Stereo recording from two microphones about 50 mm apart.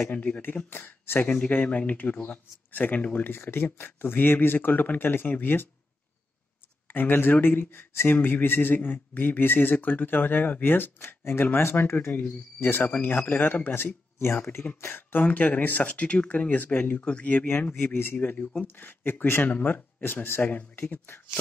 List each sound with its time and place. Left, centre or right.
0.1 s speech: left
0.7 s speech: left
1.2 s speech: left
3.3 s speech: left
6.9 s speech: left
12.9 s speech: left
14.1 s speech: left
14.8 s speech: left
17.0 s speech: left
17.7 s speech: left
18.1 s speech: left